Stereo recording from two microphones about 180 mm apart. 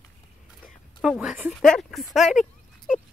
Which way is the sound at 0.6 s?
5° right (ahead or behind).